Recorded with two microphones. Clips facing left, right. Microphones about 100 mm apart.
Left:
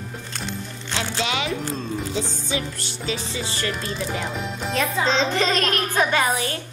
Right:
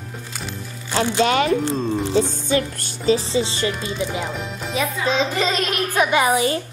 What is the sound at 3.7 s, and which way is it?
A child's voice, centre (ahead or behind).